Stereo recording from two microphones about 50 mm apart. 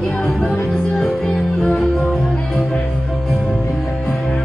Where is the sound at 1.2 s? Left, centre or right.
Left.